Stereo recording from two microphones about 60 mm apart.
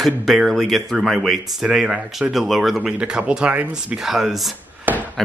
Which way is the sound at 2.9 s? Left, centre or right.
Centre.